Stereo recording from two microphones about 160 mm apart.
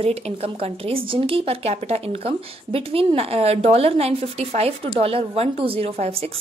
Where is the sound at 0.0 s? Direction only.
40° right (ahead or behind).